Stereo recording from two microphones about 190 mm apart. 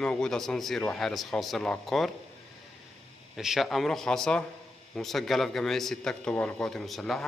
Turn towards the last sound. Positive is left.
turn(degrees=0)  # may be behind; listen again after turning